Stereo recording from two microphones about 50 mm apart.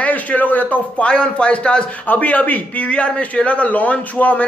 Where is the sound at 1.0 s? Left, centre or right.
Left.